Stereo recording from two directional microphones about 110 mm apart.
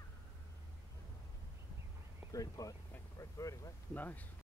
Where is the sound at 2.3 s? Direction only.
30° left (ahead or behind).